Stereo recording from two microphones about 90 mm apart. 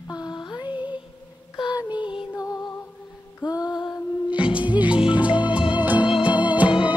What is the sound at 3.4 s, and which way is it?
Music, 45° left (ahead or behind).